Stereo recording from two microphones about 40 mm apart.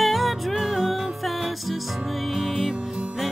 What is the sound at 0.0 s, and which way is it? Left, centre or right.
Music, centre.